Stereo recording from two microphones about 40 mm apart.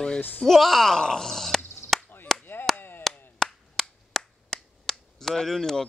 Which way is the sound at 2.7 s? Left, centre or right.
Left.